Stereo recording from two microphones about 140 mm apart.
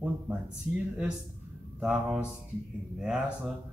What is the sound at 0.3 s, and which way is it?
Speech, 10° right (ahead or behind).